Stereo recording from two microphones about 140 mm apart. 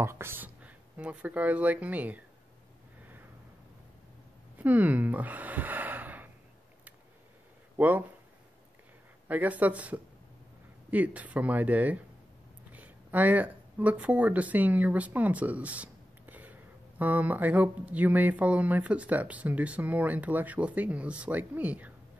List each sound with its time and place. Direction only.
0.0 s speech: 20° right (ahead or behind)
4.6 s a sound: 10° right (ahead or behind)
7.7 s speech: 10° right (ahead or behind)
9.3 s speech: 10° right (ahead or behind)